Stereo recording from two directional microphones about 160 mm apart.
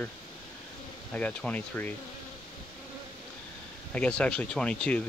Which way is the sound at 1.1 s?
10° left (ahead or behind).